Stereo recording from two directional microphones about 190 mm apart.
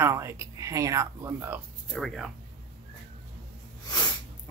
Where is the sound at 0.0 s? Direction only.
15° right (ahead or behind).